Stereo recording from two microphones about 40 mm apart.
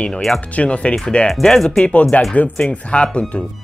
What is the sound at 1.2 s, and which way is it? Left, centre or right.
Speech, centre.